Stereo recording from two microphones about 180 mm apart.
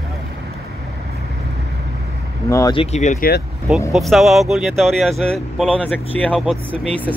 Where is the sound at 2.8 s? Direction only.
40° left (ahead or behind).